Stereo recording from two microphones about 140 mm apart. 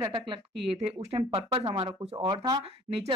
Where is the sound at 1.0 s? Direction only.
45° right (ahead or behind).